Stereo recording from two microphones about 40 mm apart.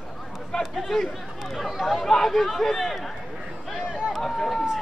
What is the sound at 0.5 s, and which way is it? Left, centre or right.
Speech, centre.